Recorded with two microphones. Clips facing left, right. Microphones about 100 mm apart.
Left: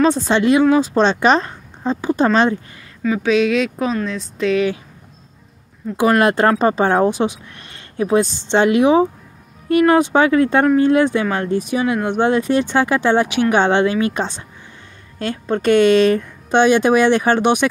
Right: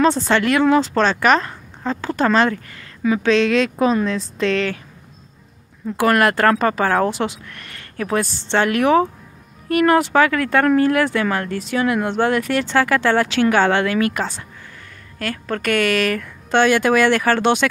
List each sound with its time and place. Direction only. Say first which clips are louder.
0.3 s speech: left 2 dB; 20° left (ahead or behind)
3.0 s a woman's voice: even; 5° right (ahead or behind)
5.9 s speech: left 2 dB; 20° left (ahead or behind)